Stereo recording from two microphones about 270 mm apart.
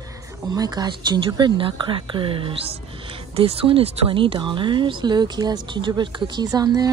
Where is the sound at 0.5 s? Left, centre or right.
Centre.